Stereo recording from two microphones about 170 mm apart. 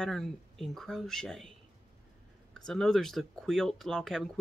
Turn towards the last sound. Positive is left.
turn(degrees=5)  # may be behind; listen again after turning